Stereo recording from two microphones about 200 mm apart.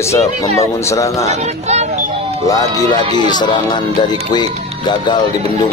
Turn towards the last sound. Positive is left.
turn(degrees=20)  # may be behind; listen again after turning